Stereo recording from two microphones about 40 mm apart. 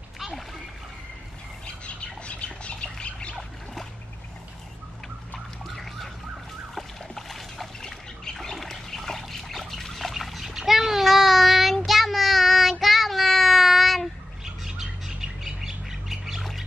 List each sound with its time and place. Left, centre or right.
2.2 s squawk: left
5.8 s a sound: centre
7.8 s trickle: centre
14.4 s bird: centre